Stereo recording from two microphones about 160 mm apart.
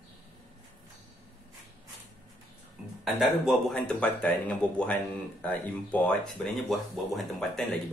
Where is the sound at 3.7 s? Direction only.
10° left (ahead or behind).